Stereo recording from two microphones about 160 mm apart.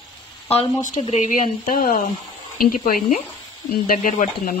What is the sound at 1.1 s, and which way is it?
Speech, 55° left (ahead or behind).